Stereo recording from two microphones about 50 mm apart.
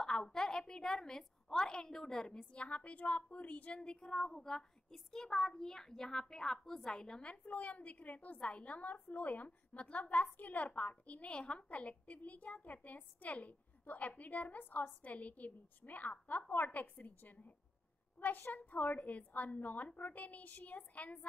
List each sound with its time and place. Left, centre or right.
0.0 s a woman's voice: centre
7.2 s a woman's voice: left
10.6 s a woman's voice: left